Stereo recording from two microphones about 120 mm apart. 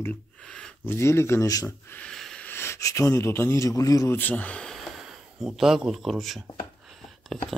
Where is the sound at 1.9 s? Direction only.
5° left (ahead or behind).